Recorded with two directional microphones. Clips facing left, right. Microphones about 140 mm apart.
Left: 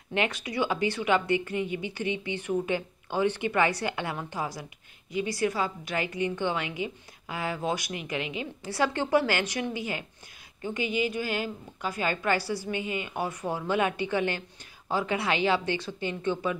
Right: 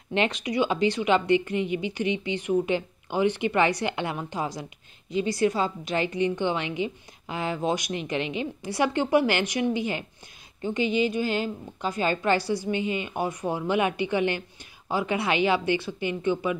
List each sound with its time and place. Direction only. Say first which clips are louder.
0.1 s a woman's voice: right 4 dB; 20° right (ahead or behind)